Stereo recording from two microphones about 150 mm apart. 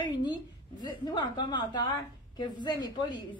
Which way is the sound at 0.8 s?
30° left (ahead or behind).